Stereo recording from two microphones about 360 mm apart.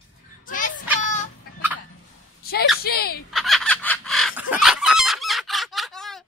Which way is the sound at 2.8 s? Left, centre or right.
Left.